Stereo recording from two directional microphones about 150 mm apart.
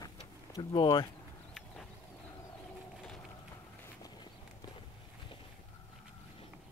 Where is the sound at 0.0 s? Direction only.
25° left (ahead or behind).